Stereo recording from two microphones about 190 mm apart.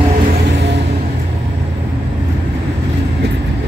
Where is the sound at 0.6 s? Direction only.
65° right (ahead or behind).